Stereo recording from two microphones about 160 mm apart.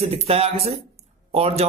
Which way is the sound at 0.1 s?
40° right (ahead or behind).